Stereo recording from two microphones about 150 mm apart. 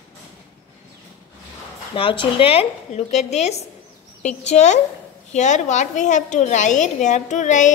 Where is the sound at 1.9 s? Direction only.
35° left (ahead or behind).